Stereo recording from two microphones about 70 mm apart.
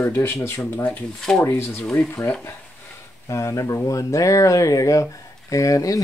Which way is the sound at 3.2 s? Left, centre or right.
Left.